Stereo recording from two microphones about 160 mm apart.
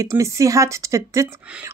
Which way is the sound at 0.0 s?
20° right (ahead or behind).